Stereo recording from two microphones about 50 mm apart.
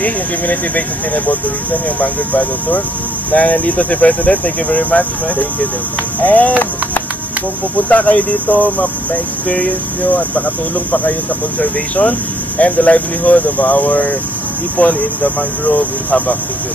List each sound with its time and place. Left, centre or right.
0.0 s speech: left
7.9 s speech: left
11.9 s speech: left